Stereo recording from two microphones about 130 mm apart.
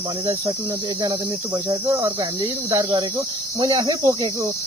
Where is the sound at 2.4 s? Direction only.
35° right (ahead or behind).